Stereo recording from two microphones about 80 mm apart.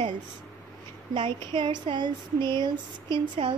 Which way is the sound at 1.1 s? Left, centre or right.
Right.